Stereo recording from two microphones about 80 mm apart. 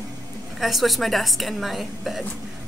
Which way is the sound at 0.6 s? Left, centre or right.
Centre.